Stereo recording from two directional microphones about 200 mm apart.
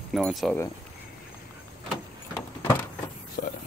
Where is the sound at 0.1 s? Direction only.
Centre (ahead or behind).